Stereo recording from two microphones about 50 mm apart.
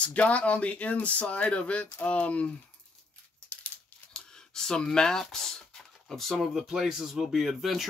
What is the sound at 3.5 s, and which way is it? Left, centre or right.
Crumpling, left.